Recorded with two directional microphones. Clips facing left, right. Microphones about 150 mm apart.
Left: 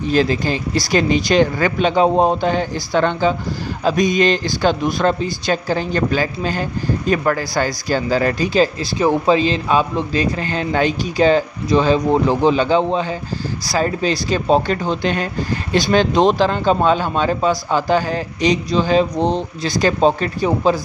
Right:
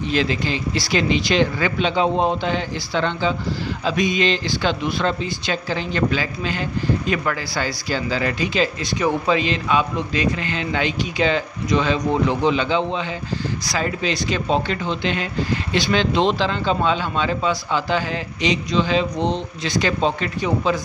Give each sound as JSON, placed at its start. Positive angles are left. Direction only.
{"t": 0.1, "sound": "speech", "side_deg": 40}